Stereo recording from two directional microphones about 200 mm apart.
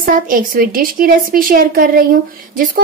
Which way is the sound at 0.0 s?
45° right (ahead or behind).